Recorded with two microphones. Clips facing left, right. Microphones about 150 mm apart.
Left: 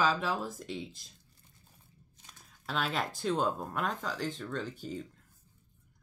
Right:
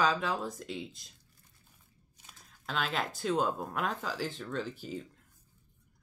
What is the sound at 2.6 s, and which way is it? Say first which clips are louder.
Speech: even; centre (ahead or behind).